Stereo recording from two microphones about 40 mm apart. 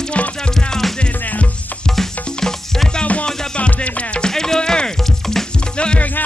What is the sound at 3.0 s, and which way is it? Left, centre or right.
Music, left.